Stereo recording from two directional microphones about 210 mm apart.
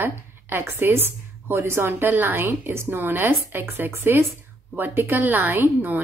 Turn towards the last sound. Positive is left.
turn(degrees=-10)  # may be behind; listen again after turning